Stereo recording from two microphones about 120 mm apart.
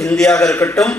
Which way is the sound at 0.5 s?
20° left (ahead or behind).